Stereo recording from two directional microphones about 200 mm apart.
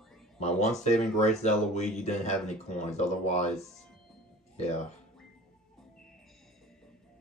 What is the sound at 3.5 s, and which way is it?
Speech, centre (ahead or behind).